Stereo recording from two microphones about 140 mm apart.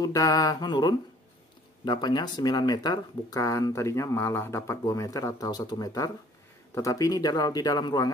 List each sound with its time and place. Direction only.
0.0 s speech: 25° left (ahead or behind)